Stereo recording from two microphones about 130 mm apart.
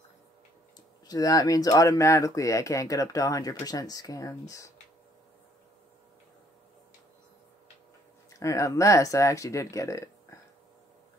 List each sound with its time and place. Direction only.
1.0 s speech: 30° left (ahead or behind)
8.3 s speech: 25° left (ahead or behind)